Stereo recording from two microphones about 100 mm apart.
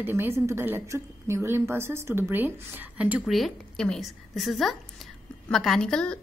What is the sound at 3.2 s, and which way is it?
A woman's voice, centre (ahead or behind).